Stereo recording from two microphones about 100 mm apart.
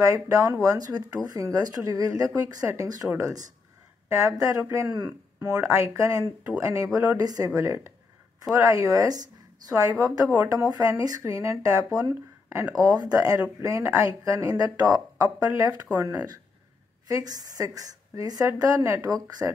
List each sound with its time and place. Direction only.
0.0 s speech: 35° right (ahead or behind)
4.8 s speech: 50° right (ahead or behind)
5.4 s speech: 35° right (ahead or behind)
12.7 s speech: 40° right (ahead or behind)
15.9 s speech: 25° right (ahead or behind)
17.1 s speech: 40° right (ahead or behind)